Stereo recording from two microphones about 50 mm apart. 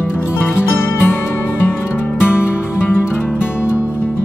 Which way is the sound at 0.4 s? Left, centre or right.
Left.